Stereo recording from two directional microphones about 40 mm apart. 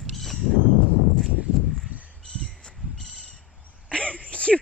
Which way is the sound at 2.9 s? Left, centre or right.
Centre.